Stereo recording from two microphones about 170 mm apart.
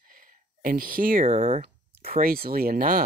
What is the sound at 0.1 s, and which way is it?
Speech, 55° right (ahead or behind).